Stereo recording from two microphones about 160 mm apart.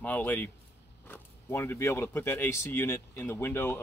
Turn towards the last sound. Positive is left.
turn(degrees=15)  # may be behind; listen again after turning